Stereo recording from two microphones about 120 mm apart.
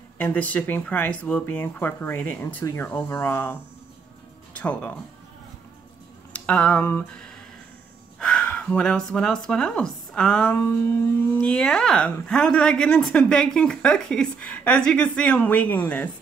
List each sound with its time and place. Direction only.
0.2 s a woman's voice: 15° left (ahead or behind)
4.6 s a woman's voice: 10° left (ahead or behind)
6.3 s speech: 10° left (ahead or behind)
8.2 s a woman's voice: 10° left (ahead or behind)